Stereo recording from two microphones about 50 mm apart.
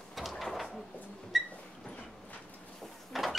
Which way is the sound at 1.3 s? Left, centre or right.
Centre.